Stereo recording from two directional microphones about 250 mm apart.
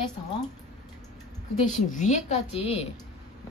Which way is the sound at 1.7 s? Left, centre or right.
Left.